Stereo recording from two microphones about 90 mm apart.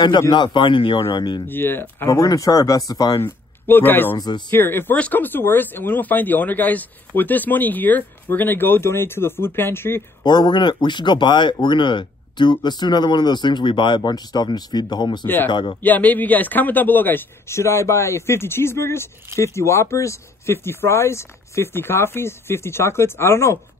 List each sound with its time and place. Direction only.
0.3 s speech: 60° left (ahead or behind); by 1.0 s 75° left (ahead or behind)
1.1 s speech: 55° left (ahead or behind)
1.5 s a man's voice: 25° left (ahead or behind)
2.0 s speech: 40° left (ahead or behind)
3.2 s a man's voice: 25° left (ahead or behind)
10.2 s speech: 50° left (ahead or behind)
15.2 s a man's voice: 20° left (ahead or behind)
15.5 s speech: 60° left (ahead or behind)
15.8 s a man's voice: 20° left (ahead or behind)